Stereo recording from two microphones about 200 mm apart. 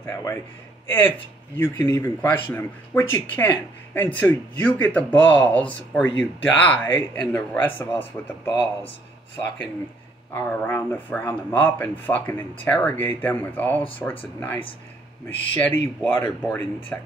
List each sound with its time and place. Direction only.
0.0 s speech: 15° left (ahead or behind)
10.3 s speech: 10° left (ahead or behind)
15.2 s speech: 10° left (ahead or behind)